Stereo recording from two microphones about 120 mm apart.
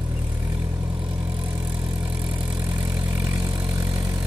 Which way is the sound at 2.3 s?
15° right (ahead or behind).